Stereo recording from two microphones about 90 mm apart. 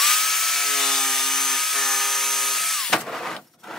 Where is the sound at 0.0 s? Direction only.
5° left (ahead or behind).